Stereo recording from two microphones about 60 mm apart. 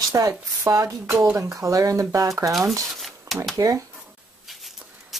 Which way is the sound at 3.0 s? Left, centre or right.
Centre.